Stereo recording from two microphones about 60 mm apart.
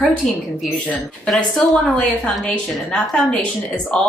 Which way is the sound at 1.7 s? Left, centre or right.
Centre.